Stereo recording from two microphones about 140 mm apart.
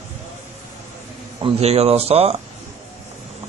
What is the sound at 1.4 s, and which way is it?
Speech, 45° right (ahead or behind).